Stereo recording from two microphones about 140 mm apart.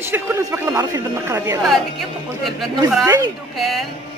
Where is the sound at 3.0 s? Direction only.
25° right (ahead or behind).